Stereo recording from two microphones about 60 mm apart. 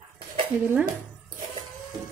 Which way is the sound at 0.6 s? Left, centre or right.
Right.